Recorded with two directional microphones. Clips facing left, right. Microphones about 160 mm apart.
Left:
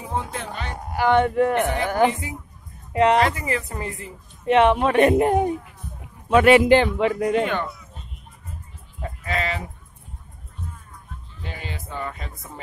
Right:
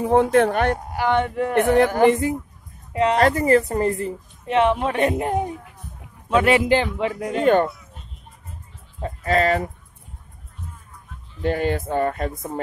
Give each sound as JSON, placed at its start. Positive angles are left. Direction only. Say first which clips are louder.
{"t": 0.0, "sound": "speech", "louder": "right 13 dB", "side_deg": -65}
{"t": 0.9, "sound": "speech", "louder": "left 7 dB", "side_deg": 50}
{"t": 1.5, "sound": "speech", "louder": "right 6 dB", "side_deg": -60}
{"t": 2.9, "sound": "speech", "louder": "left 2 dB", "side_deg": 65}
{"t": 3.2, "sound": "speech", "louder": "right 5 dB", "side_deg": -45}
{"t": 4.5, "sound": "speech", "louder": "left 2 dB", "side_deg": 70}
{"t": 7.4, "sound": "speech", "louder": "right 9 dB", "side_deg": -45}
{"t": 9.0, "sound": "speech", "louder": "right 7 dB", "side_deg": -40}
{"t": 11.4, "sound": "speech", "louder": "right 14 dB", "side_deg": -55}